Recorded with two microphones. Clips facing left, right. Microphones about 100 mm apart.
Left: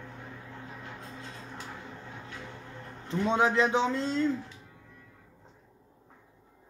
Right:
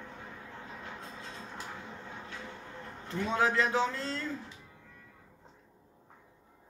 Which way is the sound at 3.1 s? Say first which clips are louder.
Left 4 dB; 20° left (ahead or behind).